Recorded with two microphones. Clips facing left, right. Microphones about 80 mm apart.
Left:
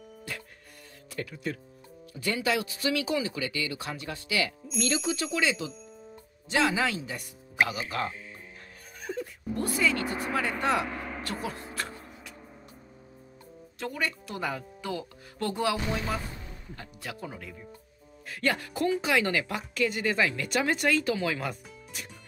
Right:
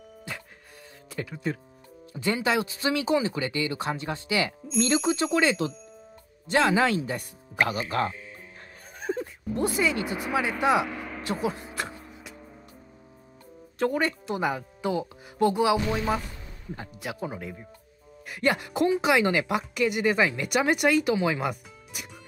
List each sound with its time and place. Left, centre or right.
1.1 s speech: right
9.0 s a sound: right
9.5 s speech: right
11.2 s a sound: centre
13.7 s speech: right
14.3 s speech: centre